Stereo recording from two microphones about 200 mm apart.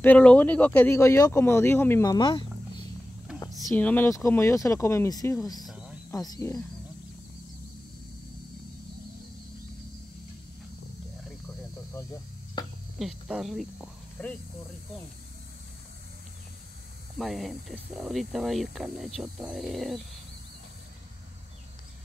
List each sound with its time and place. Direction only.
0.0 s speech: 5° left (ahead or behind)
5.7 s cricket: 5° right (ahead or behind)
6.1 s speech: 15° left (ahead or behind)
13.0 s speech: centre (ahead or behind)
17.2 s speech: centre (ahead or behind)